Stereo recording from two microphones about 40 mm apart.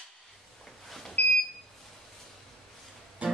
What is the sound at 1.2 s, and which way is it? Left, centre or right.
Smoke detector, left.